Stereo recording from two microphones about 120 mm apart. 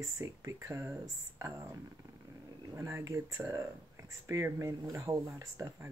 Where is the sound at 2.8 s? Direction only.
25° right (ahead or behind).